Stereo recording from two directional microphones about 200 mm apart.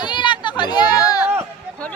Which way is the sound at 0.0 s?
25° left (ahead or behind).